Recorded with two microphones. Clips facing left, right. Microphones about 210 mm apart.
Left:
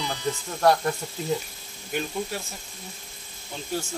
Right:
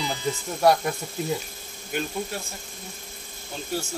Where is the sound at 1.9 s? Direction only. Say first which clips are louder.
Even; centre (ahead or behind).